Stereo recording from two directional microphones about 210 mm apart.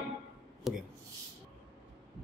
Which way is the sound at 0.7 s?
Centre (ahead or behind).